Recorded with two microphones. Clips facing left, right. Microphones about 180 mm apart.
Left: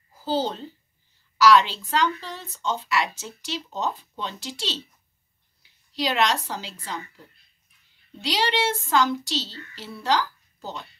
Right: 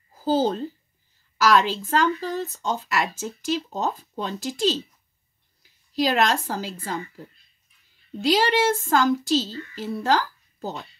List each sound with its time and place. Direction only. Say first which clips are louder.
0.2 s a woman's voice: right 4 dB; 45° right (ahead or behind)
8.2 s speech: right 5 dB; 45° right (ahead or behind)